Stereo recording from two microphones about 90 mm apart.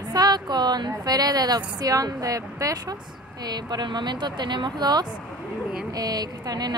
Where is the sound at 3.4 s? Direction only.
55° right (ahead or behind).